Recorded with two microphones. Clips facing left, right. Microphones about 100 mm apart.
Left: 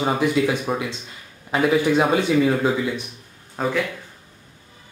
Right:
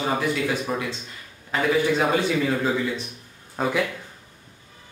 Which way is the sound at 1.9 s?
15° left (ahead or behind).